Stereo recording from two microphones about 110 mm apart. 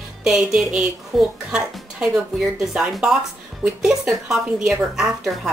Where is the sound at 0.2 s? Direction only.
5° right (ahead or behind).